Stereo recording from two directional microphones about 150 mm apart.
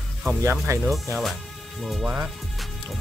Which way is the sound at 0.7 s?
20° right (ahead or behind).